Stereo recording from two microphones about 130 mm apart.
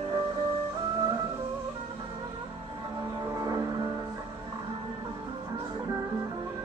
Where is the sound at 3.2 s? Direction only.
30° right (ahead or behind).